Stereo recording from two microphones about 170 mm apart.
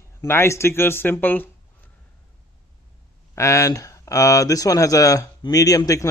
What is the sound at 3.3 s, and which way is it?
Speech, 15° left (ahead or behind).